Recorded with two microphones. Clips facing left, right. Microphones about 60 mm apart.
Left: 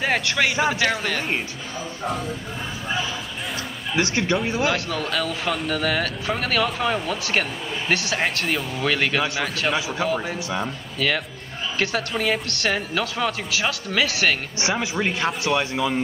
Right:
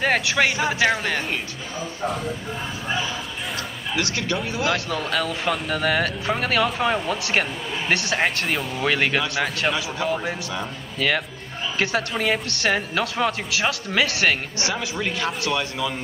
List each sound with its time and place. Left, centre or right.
0.0 s a man's voice: centre
3.9 s speech: left
4.7 s speech: centre
9.8 s speech: centre
10.0 s a man's voice: centre
14.8 s speech: centre